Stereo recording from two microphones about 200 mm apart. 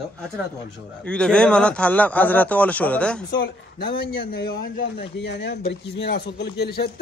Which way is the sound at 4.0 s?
55° left (ahead or behind).